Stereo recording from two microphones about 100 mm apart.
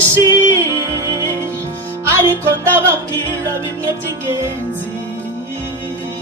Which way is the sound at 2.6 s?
25° right (ahead or behind).